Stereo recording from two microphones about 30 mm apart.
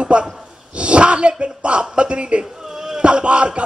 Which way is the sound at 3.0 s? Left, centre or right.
Right.